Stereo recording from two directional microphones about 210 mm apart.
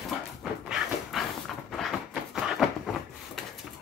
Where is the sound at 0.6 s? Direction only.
Centre (ahead or behind).